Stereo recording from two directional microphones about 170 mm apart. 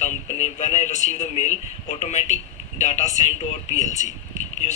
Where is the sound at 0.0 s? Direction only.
45° left (ahead or behind).